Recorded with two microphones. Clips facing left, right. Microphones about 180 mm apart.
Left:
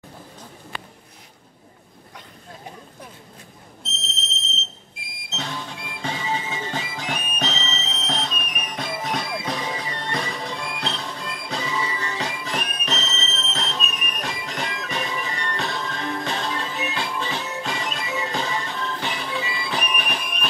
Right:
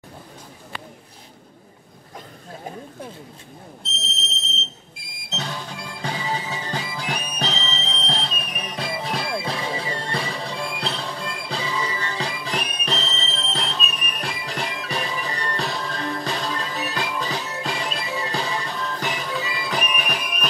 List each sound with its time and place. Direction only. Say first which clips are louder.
5.3 s music: right 1 dB; 35° right (ahead or behind)